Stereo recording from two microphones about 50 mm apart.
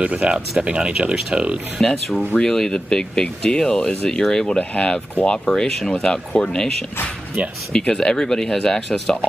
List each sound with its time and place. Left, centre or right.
0.0 s speech: right
1.8 s speech: centre
4.6 s speech: left
5.5 s speech: centre
7.4 s speech: right
7.7 s speech: centre